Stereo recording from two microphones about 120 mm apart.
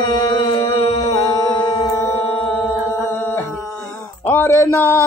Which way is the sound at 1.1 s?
30° left (ahead or behind).